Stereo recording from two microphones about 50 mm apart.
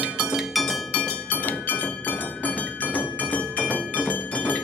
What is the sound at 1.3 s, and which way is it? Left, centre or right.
Music, left.